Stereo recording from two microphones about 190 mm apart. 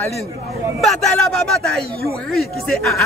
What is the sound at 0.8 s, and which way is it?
A man's voice, 5° left (ahead or behind).